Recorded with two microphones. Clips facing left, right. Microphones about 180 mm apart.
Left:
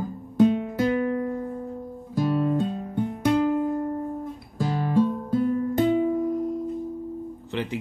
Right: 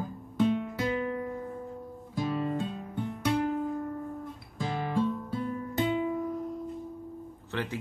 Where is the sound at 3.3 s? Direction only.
85° left.